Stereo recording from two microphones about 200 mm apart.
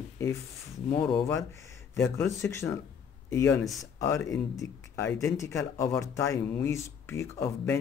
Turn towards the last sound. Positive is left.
turn(degrees=15)  # may be behind; listen again after turning